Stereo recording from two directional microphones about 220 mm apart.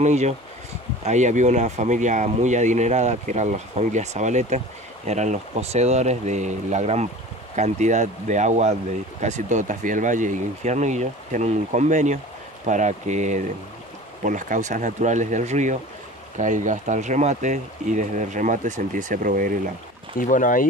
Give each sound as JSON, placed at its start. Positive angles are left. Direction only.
{"t": 0.0, "sound": "speech", "side_deg": -30}
{"t": 20.2, "sound": "speech", "side_deg": 35}